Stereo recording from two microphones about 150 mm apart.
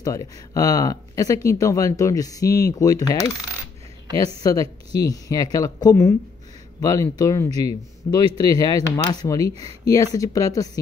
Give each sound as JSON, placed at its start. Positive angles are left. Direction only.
{"t": 0.0, "sound": "speech", "side_deg": 20}
{"t": 4.4, "sound": "speech", "side_deg": 25}